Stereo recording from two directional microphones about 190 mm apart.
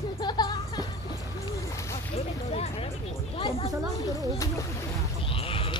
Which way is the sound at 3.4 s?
30° left (ahead or behind).